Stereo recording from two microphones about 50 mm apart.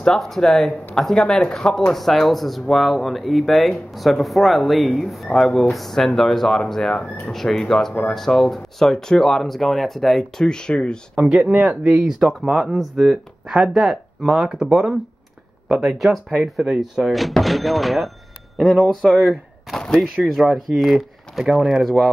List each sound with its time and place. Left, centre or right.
0.0 s speech: centre
11.1 s speech: right
12.0 s speech: centre
14.6 s speech: centre
16.0 s speech: centre